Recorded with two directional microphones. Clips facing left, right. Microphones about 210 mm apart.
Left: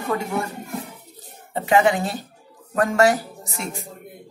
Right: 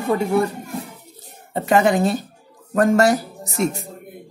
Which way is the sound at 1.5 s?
40° right (ahead or behind).